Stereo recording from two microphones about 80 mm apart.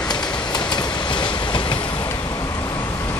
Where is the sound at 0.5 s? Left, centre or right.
Left.